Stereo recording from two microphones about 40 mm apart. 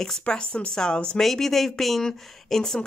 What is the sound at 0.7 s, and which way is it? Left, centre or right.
Speech, left.